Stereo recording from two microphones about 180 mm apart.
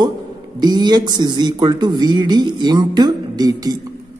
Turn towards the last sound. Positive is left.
turn(degrees=-20)  # may be behind; listen again after turning